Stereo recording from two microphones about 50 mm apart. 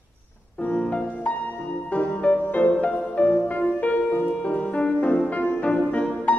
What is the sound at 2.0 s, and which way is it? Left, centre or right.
Music, left.